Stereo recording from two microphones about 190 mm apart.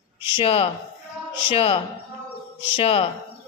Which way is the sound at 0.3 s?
30° left (ahead or behind).